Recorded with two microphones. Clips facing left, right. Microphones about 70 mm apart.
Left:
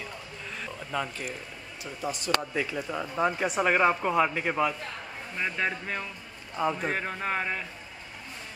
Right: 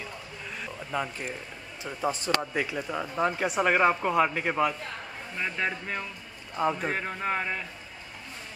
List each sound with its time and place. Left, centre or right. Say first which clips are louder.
0.6 s a sound: right 1 dB; centre
1.8 s speech: right 4 dB; right
2.5 s speech: right 1 dB; centre